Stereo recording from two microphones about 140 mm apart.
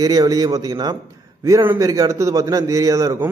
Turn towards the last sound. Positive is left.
turn(degrees=-20)  # may be behind; listen again after turning